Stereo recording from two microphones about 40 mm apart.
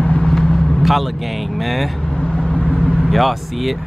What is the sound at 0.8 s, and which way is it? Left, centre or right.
Vehicle, centre.